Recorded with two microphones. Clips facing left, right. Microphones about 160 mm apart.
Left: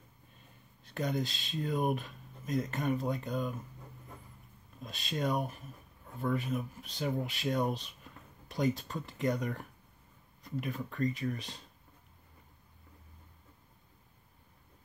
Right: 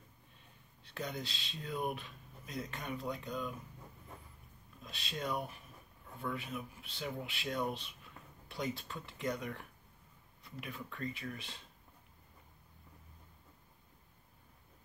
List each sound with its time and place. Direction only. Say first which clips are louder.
0.8 s speech: left 8 dB; 45° left (ahead or behind)
4.8 s speech: left 6 dB; 45° left (ahead or behind)